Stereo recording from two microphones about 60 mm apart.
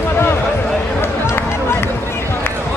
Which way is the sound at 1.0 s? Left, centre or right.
Left.